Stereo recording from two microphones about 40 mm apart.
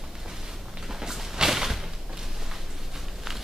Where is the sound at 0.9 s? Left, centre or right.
Centre.